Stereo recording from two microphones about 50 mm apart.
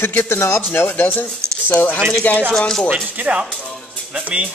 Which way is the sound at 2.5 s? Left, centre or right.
Centre.